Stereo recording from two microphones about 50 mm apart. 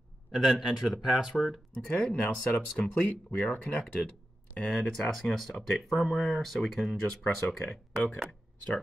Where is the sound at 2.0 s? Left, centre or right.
Left.